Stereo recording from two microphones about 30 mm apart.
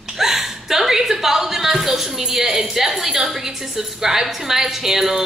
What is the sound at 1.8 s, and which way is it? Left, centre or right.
A woman's voice, centre.